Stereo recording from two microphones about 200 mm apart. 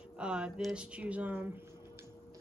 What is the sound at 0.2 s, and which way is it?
Speech, 5° right (ahead or behind).